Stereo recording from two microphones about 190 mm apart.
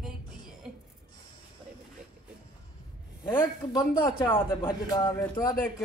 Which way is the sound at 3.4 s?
20° left (ahead or behind).